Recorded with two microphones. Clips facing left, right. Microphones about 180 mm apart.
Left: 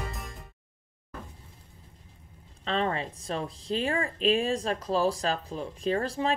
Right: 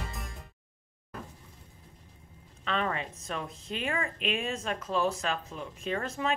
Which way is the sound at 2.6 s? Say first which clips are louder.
Left 3 dB; 30° left (ahead or behind).